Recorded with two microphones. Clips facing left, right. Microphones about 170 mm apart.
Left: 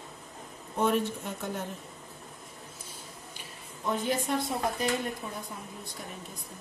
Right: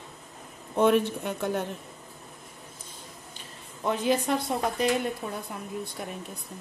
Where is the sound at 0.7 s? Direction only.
70° right (ahead or behind).